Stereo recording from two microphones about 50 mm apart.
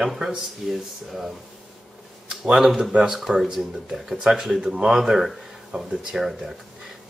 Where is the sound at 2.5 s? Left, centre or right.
Centre.